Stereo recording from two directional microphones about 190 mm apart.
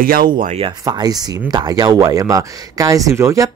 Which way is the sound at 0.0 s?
50° right (ahead or behind).